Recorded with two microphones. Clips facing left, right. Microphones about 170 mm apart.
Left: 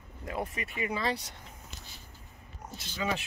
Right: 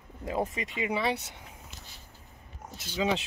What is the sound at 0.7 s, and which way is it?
Speech, 20° right (ahead or behind).